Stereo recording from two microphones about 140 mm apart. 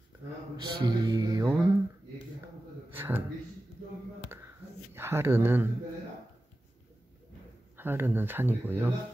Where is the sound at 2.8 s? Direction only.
15° right (ahead or behind).